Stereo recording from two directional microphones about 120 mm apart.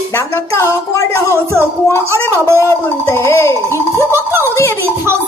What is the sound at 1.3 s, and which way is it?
Speech, 20° right (ahead or behind).